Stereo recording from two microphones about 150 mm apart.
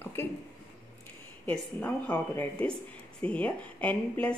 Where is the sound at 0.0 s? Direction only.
15° left (ahead or behind).